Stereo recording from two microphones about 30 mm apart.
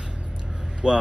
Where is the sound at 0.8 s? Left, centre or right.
Right.